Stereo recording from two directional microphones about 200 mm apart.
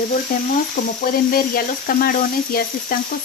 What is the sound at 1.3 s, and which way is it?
Speech, 45° left (ahead or behind).